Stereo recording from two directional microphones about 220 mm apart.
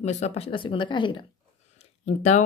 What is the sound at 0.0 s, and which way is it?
Speech, 30° left (ahead or behind).